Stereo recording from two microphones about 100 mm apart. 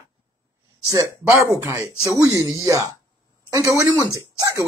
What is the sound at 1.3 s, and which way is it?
Speech, 30° right (ahead or behind).